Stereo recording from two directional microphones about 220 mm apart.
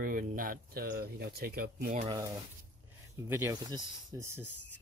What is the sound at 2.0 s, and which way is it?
Speech, 15° right (ahead or behind).